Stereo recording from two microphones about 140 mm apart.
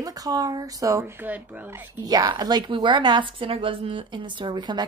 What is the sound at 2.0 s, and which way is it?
A woman's voice, 30° right (ahead or behind).